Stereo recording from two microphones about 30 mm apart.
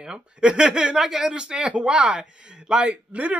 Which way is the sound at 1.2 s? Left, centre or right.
Right.